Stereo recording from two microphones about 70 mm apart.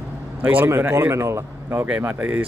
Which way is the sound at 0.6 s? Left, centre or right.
Right.